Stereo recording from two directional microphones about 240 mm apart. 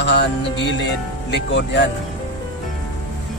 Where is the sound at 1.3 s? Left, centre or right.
Left.